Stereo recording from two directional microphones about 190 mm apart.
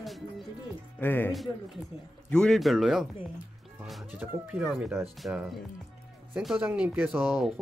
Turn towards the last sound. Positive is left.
turn(degrees=-10)  # may be behind; listen again after turning